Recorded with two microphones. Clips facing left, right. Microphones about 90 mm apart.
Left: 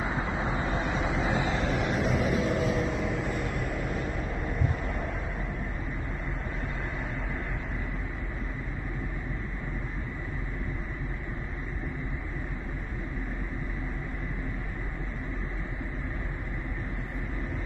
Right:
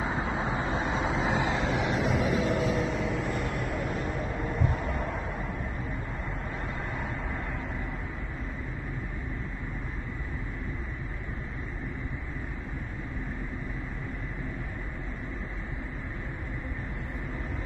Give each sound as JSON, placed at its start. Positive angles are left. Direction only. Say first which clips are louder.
{"t": 0.0, "sound": "vehicle", "louder": "right 1 dB", "side_deg": -25}
{"t": 1.7, "sound": "vehicle", "louder": "even", "side_deg": -5}